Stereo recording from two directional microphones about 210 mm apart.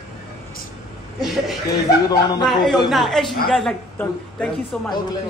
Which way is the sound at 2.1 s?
20° left (ahead or behind).